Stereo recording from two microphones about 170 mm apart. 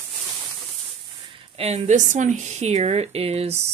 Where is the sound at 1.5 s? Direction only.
40° right (ahead or behind).